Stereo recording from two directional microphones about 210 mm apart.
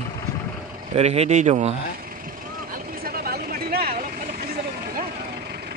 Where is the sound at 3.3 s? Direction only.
45° right (ahead or behind).